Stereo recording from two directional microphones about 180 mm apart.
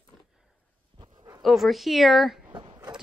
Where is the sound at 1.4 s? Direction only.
Centre (ahead or behind).